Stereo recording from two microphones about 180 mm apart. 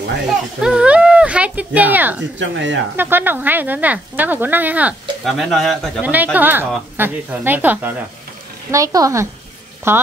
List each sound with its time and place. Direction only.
0.6 s speech: 5° right (ahead or behind)
2.3 s speech: 90° right
3.0 s speech: 10° right (ahead or behind)